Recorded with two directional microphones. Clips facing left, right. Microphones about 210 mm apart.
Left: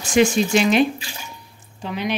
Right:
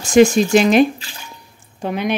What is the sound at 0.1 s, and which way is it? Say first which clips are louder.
Speech: right 6 dB; 45° right (ahead or behind).